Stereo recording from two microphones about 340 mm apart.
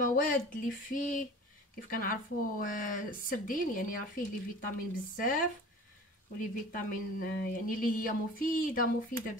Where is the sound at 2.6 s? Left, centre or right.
Left.